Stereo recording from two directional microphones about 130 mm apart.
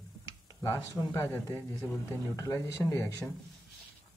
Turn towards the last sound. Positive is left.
turn(degrees=20)  # may be behind; listen again after turning